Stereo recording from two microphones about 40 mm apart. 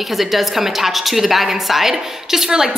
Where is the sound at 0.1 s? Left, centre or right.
Centre.